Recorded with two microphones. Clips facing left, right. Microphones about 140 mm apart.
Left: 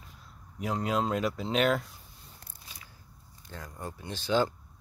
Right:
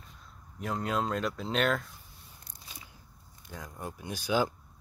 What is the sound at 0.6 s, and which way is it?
Speech, centre (ahead or behind).